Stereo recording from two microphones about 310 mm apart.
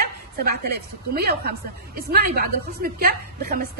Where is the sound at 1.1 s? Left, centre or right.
Right.